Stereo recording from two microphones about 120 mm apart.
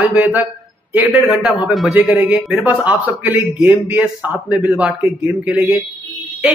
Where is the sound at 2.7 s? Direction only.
15° right (ahead or behind).